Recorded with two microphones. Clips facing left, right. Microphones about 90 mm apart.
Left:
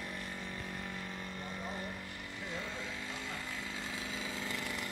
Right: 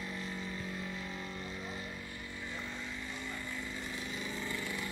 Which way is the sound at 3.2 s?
90° left.